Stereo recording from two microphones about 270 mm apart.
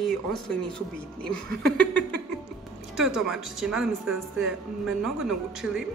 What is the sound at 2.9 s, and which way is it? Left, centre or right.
Speech, centre.